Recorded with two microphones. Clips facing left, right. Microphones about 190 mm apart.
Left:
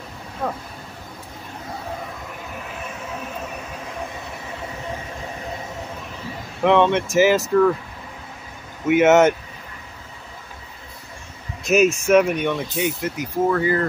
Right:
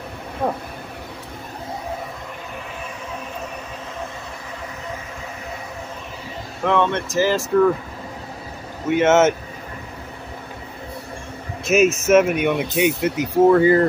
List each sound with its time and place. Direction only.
6.6 s speech: 20° left (ahead or behind)
8.8 s speech: 5° left (ahead or behind)
11.6 s speech: centre (ahead or behind); by 13.7 s 25° right (ahead or behind)